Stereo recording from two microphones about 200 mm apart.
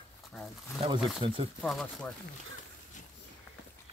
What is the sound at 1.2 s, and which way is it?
Speech, 25° right (ahead or behind).